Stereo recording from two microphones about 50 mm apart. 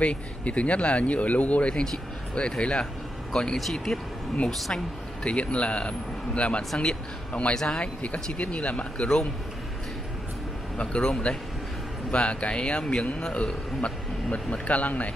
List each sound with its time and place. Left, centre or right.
0.0 s a man's voice: left
3.5 s a man's voice: centre
5.2 s a man's voice: left
10.8 s a man's voice: left